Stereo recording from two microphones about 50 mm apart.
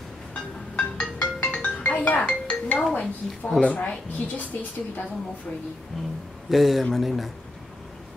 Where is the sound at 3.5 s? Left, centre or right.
Left.